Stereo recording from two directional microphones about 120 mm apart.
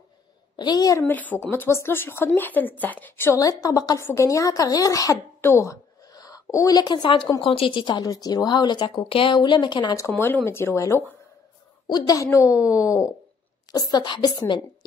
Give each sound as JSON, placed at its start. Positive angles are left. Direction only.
{"t": 0.6, "sound": "a woman's voice", "side_deg": 35}
{"t": 1.0, "sound": "speech", "side_deg": 15}
{"t": 3.3, "sound": "a woman's voice", "side_deg": 30}
{"t": 6.8, "sound": "a woman's voice", "side_deg": 40}
{"t": 9.9, "sound": "a woman's voice", "side_deg": 20}